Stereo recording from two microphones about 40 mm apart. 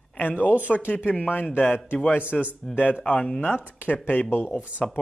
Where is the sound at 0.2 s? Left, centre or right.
Left.